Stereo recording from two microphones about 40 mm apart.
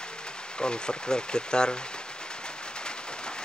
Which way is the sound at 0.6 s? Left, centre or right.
Left.